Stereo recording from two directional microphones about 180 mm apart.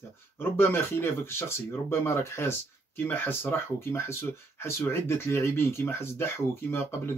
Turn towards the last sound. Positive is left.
turn(degrees=15)  # may be behind; listen again after turning